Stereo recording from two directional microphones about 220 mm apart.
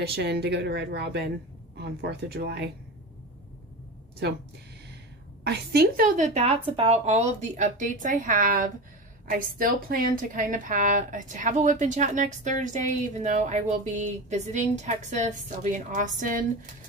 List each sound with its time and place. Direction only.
0.0 s a woman's voice: 45° right (ahead or behind)
5.4 s a woman's voice: 45° right (ahead or behind)